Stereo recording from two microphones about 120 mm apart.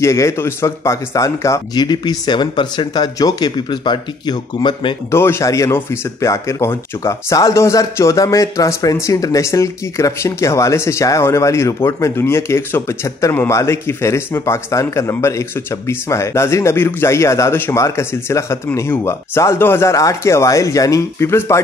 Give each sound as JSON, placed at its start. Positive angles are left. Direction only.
{"t": 0.0, "sound": "speech", "side_deg": 25}
{"t": 5.1, "sound": "speech", "side_deg": 20}